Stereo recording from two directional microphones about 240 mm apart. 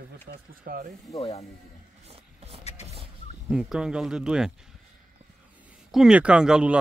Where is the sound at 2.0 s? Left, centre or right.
Right.